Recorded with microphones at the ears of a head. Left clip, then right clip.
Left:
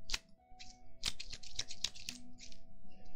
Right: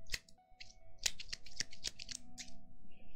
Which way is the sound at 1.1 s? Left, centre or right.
Left.